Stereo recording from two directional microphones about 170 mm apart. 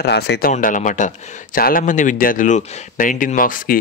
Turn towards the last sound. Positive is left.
turn(degrees=55)  # may be behind; listen again after turning